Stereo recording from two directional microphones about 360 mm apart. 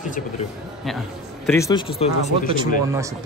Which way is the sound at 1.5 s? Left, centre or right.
Centre.